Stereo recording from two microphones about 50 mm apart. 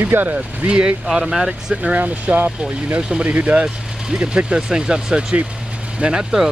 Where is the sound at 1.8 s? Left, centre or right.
Right.